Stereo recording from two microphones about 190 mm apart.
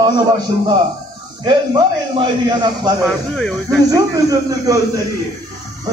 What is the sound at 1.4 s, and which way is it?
A man's voice, 25° right (ahead or behind).